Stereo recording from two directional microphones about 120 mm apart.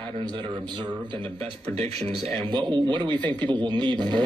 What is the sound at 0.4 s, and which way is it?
Speech, 45° right (ahead or behind).